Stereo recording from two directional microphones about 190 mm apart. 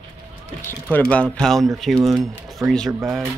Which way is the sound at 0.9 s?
5° left (ahead or behind).